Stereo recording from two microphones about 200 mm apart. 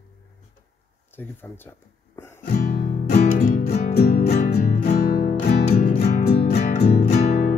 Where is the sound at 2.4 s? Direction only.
40° left (ahead or behind).